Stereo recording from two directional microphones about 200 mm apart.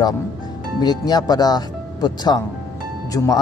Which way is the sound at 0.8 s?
20° left (ahead or behind).